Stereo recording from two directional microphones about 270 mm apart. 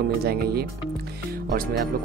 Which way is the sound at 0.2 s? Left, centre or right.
Right.